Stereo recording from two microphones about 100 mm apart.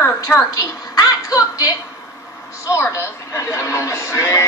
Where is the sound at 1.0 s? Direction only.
40° left (ahead or behind).